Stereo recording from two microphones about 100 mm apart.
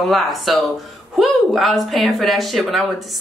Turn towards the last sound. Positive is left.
turn(degrees=0)  # may be behind; listen again after turning